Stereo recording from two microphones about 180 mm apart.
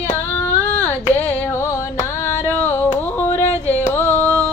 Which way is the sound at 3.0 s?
10° left (ahead or behind).